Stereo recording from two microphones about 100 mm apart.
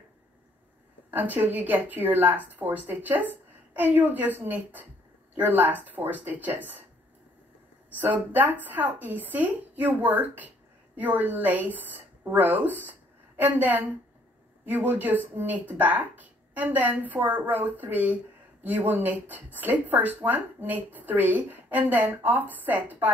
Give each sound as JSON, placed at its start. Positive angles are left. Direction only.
{"t": 1.1, "sound": "speech", "side_deg": -20}
{"t": 7.9, "sound": "speech", "side_deg": -15}